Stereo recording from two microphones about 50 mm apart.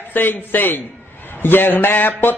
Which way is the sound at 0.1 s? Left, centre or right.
Left.